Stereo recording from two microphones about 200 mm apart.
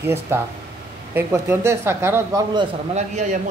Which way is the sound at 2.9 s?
35° right (ahead or behind).